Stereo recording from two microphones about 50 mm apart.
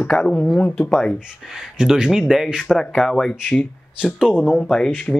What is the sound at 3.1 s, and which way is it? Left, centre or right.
Speech, centre.